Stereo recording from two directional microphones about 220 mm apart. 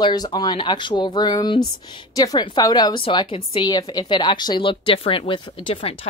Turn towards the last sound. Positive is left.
turn(degrees=25)  # may be behind; listen again after turning